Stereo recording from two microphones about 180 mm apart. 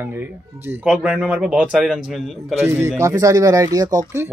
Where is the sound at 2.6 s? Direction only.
15° right (ahead or behind).